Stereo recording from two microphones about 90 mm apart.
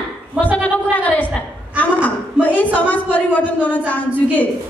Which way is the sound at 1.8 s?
20° left (ahead or behind).